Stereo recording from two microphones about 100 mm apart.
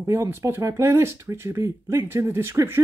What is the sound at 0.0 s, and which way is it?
Speech, 25° right (ahead or behind).